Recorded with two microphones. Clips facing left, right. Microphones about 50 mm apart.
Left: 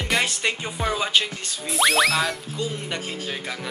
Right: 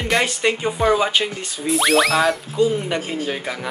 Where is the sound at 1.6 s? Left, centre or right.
Centre.